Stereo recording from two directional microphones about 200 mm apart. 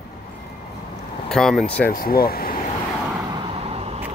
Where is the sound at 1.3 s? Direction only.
Centre (ahead or behind).